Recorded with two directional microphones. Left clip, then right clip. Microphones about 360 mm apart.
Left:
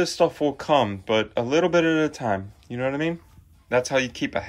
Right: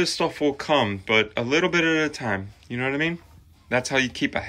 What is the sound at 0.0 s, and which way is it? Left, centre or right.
Speech, centre.